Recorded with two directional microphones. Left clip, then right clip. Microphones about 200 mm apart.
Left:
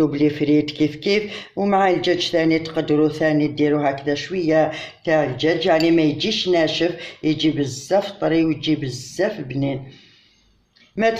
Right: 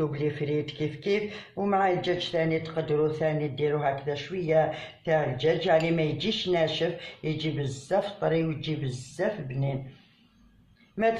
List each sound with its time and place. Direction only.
0.1 s speech: 35° left (ahead or behind)